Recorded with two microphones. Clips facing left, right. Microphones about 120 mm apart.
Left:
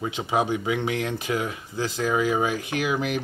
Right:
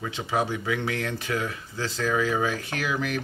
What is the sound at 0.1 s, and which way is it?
Speech, 20° left (ahead or behind).